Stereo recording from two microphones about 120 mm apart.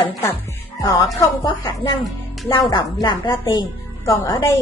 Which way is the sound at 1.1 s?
35° left (ahead or behind).